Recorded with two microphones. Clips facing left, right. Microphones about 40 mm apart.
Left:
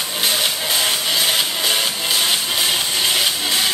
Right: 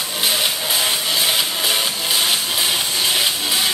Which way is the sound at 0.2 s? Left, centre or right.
Centre.